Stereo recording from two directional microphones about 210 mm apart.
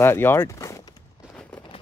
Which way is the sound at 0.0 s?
10° left (ahead or behind).